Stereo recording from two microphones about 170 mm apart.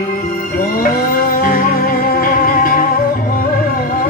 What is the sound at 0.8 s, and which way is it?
Music, 55° left (ahead or behind).